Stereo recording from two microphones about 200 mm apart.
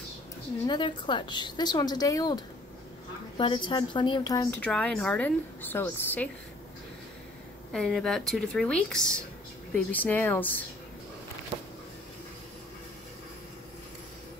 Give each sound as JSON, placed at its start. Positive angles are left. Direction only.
{"t": 0.7, "sound": "a woman's voice", "side_deg": 25}
{"t": 4.5, "sound": "a woman's voice", "side_deg": 5}
{"t": 7.7, "sound": "a woman's voice", "side_deg": 5}